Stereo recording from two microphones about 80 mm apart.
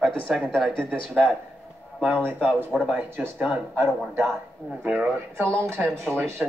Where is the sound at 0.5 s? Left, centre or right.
Centre.